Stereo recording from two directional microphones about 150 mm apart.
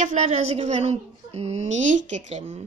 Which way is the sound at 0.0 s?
50° right (ahead or behind).